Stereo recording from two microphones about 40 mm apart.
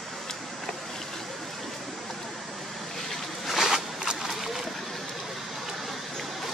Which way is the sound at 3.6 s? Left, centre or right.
Centre.